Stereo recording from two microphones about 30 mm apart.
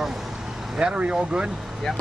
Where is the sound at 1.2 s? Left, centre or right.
Right.